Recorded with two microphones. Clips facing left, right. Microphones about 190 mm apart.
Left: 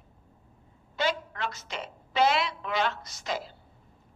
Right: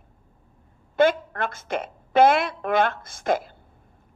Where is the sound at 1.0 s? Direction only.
50° right (ahead or behind).